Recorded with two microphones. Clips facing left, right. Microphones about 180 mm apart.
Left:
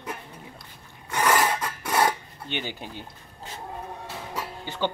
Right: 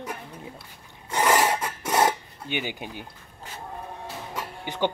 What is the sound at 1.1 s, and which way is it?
Filing, 20° right (ahead or behind).